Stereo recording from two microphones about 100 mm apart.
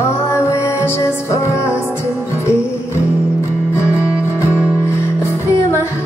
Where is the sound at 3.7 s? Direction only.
25° left (ahead or behind).